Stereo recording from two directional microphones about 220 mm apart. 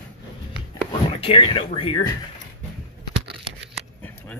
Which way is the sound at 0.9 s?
25° left (ahead or behind).